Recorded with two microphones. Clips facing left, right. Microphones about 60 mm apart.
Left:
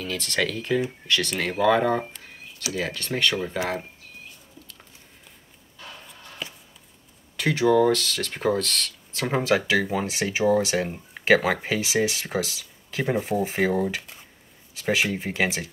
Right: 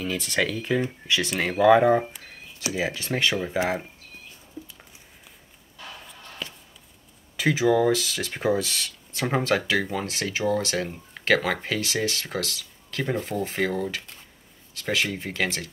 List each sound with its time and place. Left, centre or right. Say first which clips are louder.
0.0 s speech: right 1 dB; centre
6.4 s a sound: left 1 dB; centre
7.3 s speech: left 1 dB; centre